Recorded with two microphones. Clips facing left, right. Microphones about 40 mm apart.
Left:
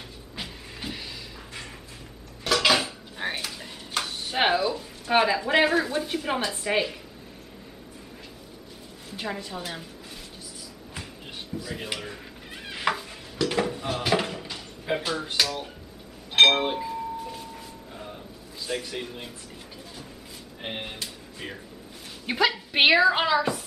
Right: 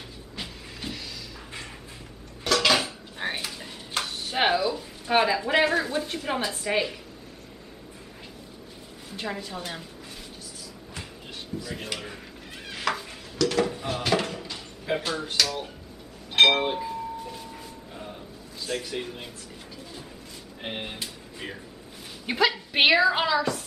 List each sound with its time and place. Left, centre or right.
0.4 s vehicle: centre
2.4 s dishes: centre
9.1 s a woman's voice: centre
11.6 s speech: centre
12.6 s dishes: centre
13.7 s drawer open or close: centre
15.4 s a woman's voice: centre
16.3 s a sound: centre
18.7 s a woman's voice: centre
20.6 s a woman's voice: centre